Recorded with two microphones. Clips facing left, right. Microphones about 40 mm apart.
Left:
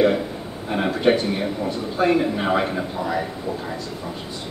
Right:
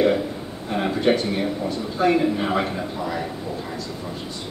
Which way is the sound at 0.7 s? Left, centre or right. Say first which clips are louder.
Left 1 dB; centre.